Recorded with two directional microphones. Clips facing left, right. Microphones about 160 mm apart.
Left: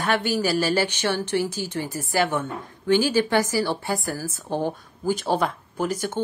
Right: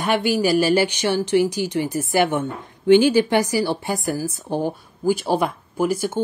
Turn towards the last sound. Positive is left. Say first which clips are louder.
# right 5 dB
turn(degrees=-10)  # may be behind; listen again after turning